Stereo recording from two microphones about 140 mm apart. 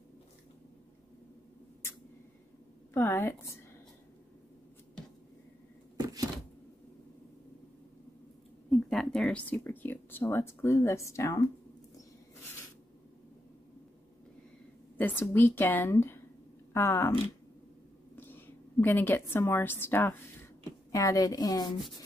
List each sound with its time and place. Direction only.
2.9 s speech: 20° left (ahead or behind)
8.6 s speech: centre (ahead or behind); by 11.4 s 20° left (ahead or behind)
15.0 s speech: 15° left (ahead or behind)
18.1 s a woman's voice: 15° left (ahead or behind)